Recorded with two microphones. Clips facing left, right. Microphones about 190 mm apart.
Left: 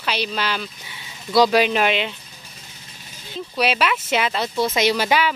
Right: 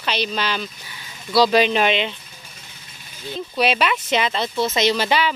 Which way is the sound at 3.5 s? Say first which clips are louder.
Right 1 dB; 5° left (ahead or behind).